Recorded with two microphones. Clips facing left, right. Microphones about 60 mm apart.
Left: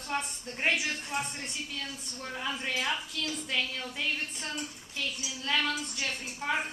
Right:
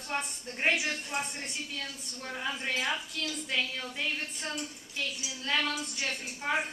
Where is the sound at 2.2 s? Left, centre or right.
Centre.